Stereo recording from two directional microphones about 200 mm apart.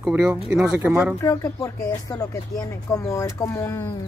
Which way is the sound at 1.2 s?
15° left (ahead or behind).